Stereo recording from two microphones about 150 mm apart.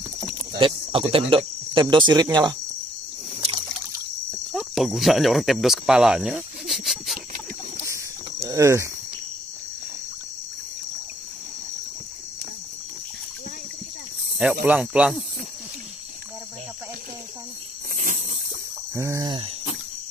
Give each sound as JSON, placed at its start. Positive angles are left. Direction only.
{"t": 0.6, "sound": "speech", "side_deg": -35}
{"t": 2.2, "sound": "cricket", "side_deg": -25}
{"t": 4.5, "sound": "speech", "side_deg": 0}
{"t": 8.5, "sound": "speech", "side_deg": -20}
{"t": 14.4, "sound": "speech", "side_deg": -10}
{"t": 18.0, "sound": "a sound", "side_deg": -50}
{"t": 18.9, "sound": "cricket", "side_deg": -20}